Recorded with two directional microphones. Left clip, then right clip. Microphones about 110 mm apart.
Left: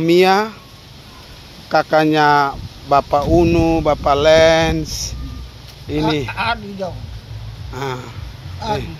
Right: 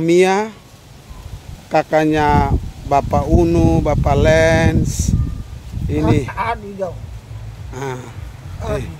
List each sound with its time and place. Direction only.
0.0 s speech: 25° right (ahead or behind)
1.7 s speech: 20° right (ahead or behind)
6.3 s speech: 35° right (ahead or behind)
7.7 s speech: 25° right (ahead or behind)